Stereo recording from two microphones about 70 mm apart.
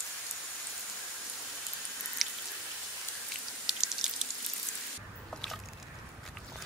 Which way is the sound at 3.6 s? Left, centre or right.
Centre.